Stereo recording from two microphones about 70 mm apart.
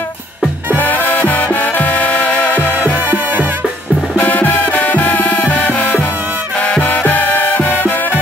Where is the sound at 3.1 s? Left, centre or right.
Right.